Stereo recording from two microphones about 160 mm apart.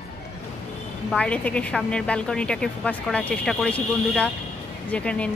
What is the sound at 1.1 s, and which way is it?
A woman's voice, 10° left (ahead or behind).